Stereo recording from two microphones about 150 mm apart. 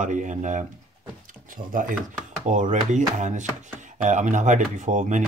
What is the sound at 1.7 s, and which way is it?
Speech, 65° right (ahead or behind).